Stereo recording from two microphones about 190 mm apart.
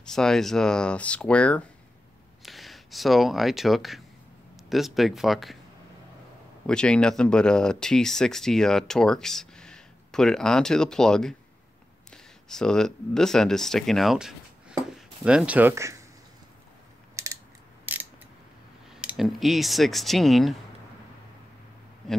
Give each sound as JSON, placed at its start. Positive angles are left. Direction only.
{"t": 0.1, "sound": "speech", "side_deg": 5}
{"t": 6.7, "sound": "speech", "side_deg": 5}
{"t": 17.1, "sound": "mechanisms", "side_deg": -15}
{"t": 18.9, "sound": "speech", "side_deg": -5}